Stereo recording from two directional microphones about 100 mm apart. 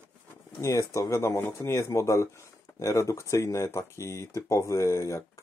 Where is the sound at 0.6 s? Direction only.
30° left (ahead or behind).